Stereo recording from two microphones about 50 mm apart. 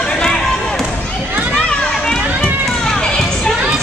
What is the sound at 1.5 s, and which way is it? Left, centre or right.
Children playing, centre.